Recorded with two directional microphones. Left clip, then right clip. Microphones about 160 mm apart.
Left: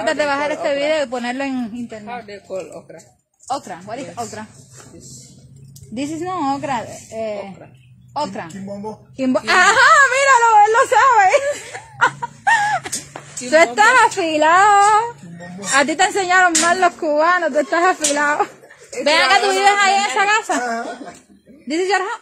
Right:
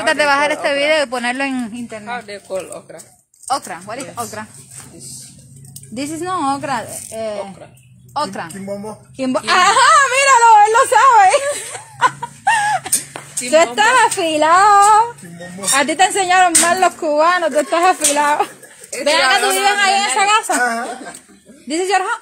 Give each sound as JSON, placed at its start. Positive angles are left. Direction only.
{"t": 0.0, "sound": "a woman's voice", "side_deg": 10}
{"t": 5.9, "sound": "a woman's voice", "side_deg": 25}
{"t": 10.2, "sound": "a sound", "side_deg": 15}
{"t": 13.5, "sound": "a woman's voice", "side_deg": 30}
{"t": 15.7, "sound": "a woman's voice", "side_deg": 30}
{"t": 20.6, "sound": "speech", "side_deg": 0}
{"t": 21.6, "sound": "a woman's voice", "side_deg": 30}